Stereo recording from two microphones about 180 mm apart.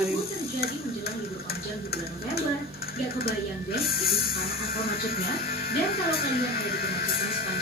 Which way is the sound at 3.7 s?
60° left (ahead or behind).